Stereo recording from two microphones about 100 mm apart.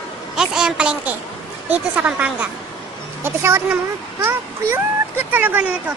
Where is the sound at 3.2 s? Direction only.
25° right (ahead or behind).